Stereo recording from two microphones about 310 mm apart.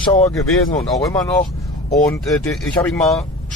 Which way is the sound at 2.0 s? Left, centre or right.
Centre.